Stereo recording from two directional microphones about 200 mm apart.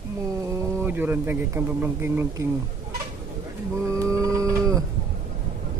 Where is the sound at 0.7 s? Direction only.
10° right (ahead or behind).